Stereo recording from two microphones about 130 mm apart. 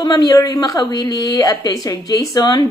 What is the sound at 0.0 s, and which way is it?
A woman's voice, 30° left (ahead or behind).